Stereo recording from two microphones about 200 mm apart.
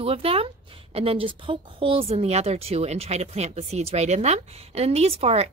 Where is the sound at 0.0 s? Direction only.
30° right (ahead or behind).